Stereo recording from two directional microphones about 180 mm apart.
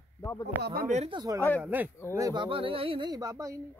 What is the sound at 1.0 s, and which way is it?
Speech, 20° right (ahead or behind).